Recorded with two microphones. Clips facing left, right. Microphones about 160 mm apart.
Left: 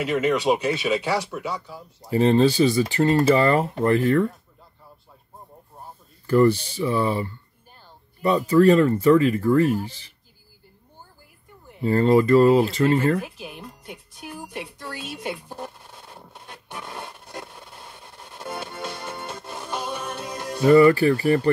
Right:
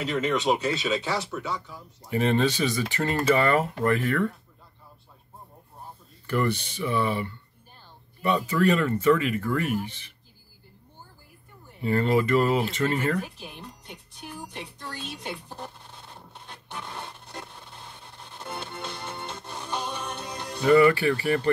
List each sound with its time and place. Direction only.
0.0 s speech: 10° left (ahead or behind)
1.7 s speech: 30° left (ahead or behind)
6.2 s speech: 35° left (ahead or behind)
11.8 s speech: 35° left (ahead or behind)
13.4 s speech: centre (ahead or behind)
19.1 s music: 5° left (ahead or behind)
20.6 s speech: 40° left (ahead or behind)